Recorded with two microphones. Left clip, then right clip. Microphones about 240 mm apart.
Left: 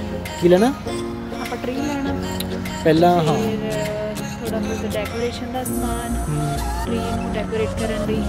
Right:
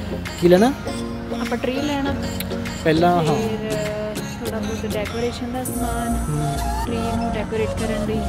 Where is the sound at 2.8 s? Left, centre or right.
Left.